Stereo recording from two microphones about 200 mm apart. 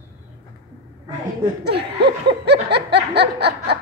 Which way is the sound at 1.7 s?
55° right (ahead or behind).